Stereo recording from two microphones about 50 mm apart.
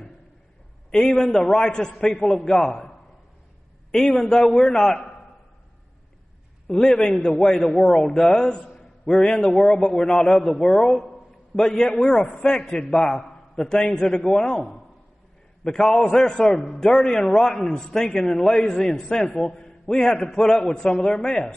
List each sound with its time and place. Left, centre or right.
0.9 s a man's voice: centre
3.9 s a man's voice: centre
6.7 s a man's voice: centre
8.7 s a sound: centre
9.2 s a man's voice: centre